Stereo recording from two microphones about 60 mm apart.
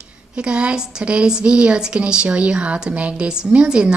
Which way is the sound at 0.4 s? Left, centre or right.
Centre.